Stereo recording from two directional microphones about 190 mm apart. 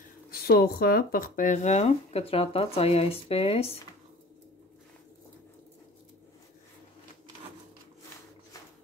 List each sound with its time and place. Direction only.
0.3 s speech: 55° left (ahead or behind); by 3.7 s 30° left (ahead or behind)